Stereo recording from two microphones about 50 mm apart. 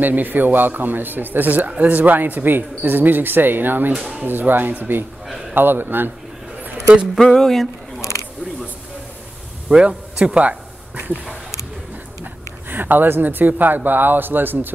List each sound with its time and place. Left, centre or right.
0.0 s a man's voice: right
7.3 s speech: centre
8.0 s camera: left
9.7 s speech: centre
12.6 s speech: right